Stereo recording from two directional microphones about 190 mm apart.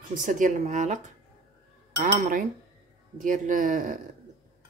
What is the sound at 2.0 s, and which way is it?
Cutlery, 45° right (ahead or behind).